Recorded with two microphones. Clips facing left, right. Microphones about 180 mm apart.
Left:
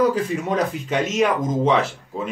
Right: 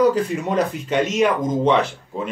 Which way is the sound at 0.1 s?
Centre (ahead or behind).